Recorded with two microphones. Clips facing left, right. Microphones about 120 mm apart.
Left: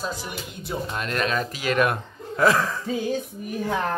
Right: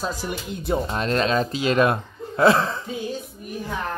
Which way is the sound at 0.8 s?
30° right (ahead or behind).